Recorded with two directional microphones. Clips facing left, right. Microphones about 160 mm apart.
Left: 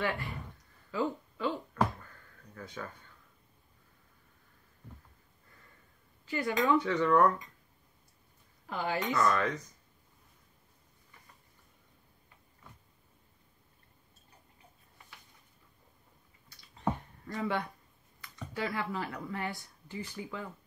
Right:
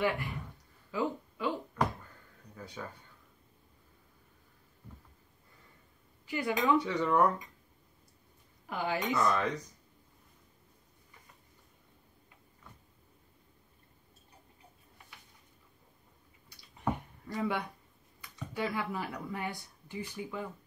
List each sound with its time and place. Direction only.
0.9 s speech: 15° right (ahead or behind)
6.2 s speech: 15° right (ahead or behind)
8.6 s speech: 15° right (ahead or behind)
16.4 s a sound: 15° right (ahead or behind)
18.5 s speech: 15° right (ahead or behind)